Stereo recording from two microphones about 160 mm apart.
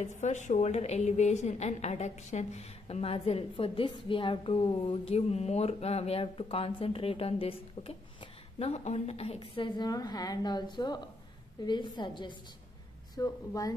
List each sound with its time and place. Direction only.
0.0 s a woman's voice: 45° left (ahead or behind); by 13.7 s 20° left (ahead or behind)